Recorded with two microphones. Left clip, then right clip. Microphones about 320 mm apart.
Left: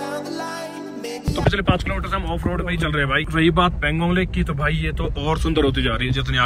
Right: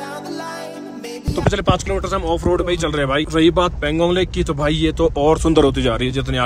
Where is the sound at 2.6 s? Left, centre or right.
Right.